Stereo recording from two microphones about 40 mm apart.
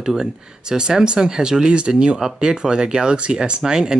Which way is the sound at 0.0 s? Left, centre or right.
Centre.